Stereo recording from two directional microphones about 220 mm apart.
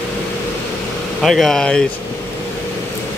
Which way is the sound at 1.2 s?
Centre (ahead or behind).